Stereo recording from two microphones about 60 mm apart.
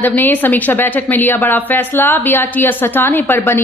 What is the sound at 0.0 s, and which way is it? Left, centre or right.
A woman's voice, left.